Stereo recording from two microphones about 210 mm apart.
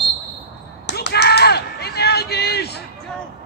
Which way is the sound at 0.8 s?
50° left (ahead or behind).